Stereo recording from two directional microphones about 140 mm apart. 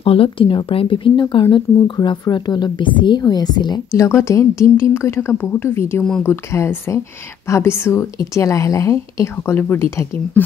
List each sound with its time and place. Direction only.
0.0 s speech: 40° left (ahead or behind); by 10.4 s 20° left (ahead or behind)